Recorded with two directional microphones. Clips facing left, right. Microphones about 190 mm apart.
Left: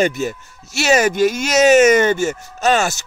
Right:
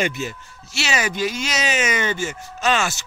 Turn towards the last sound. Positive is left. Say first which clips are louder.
# left 5 dB
turn(degrees=40)  # may be behind; listen again after turning